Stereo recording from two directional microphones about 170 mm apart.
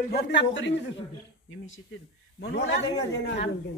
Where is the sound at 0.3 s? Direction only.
90° left.